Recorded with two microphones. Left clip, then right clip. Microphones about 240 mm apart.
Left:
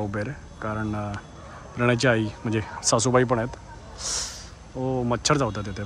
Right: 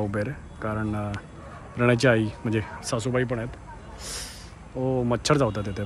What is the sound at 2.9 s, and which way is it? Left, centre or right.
Speech, left.